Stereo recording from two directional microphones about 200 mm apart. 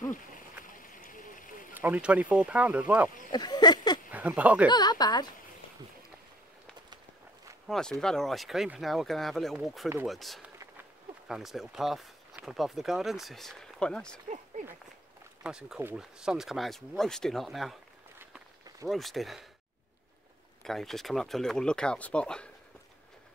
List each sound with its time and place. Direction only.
0.8 s a sound: 40° left (ahead or behind)
1.7 s speech: 10° right (ahead or behind)
3.3 s speech: 20° left (ahead or behind)
4.1 s speech: 5° right (ahead or behind)
4.6 s a woman's voice: 20° left (ahead or behind)
7.6 s speech: centre (ahead or behind)
15.4 s speech: 5° right (ahead or behind)
18.2 s run: 10° right (ahead or behind)
18.9 s speech: centre (ahead or behind)
20.6 s speech: centre (ahead or behind)